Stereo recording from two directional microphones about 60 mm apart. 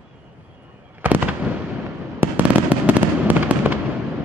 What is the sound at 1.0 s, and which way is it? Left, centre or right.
Fireworks, right.